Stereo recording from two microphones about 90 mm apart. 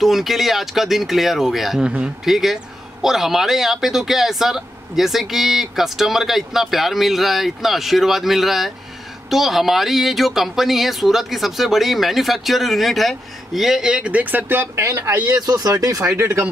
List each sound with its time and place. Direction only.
0.0 s speech: 5° right (ahead or behind); by 14.7 s 20° right (ahead or behind)
14.8 s speech: 35° right (ahead or behind)